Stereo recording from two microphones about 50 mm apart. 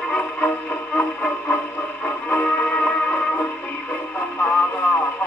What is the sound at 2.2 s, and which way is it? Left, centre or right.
Music, left.